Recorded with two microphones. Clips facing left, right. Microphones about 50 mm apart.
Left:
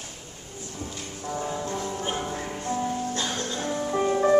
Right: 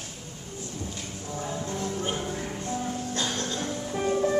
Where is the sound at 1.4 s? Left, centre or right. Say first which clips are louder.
Even; centre.